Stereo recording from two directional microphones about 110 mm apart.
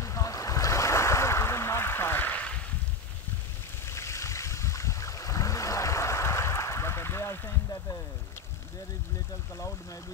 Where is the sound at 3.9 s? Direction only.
25° left (ahead or behind).